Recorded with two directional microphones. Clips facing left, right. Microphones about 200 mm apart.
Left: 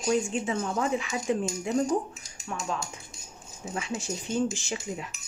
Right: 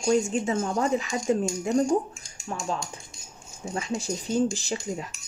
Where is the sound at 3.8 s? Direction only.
35° right (ahead or behind).